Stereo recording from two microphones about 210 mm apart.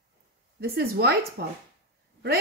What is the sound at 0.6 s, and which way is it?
Speech, 50° right (ahead or behind).